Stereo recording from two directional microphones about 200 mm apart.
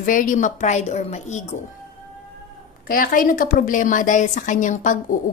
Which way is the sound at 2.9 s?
45° left (ahead or behind).